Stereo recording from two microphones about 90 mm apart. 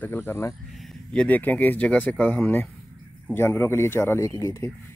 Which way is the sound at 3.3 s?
25° left (ahead or behind).